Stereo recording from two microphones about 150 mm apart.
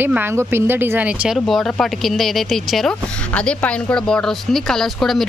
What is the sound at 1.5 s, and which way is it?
Speech, centre (ahead or behind).